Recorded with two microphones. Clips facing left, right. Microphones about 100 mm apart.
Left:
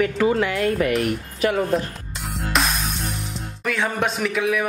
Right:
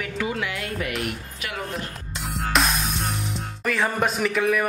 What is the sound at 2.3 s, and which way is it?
Music, centre (ahead or behind).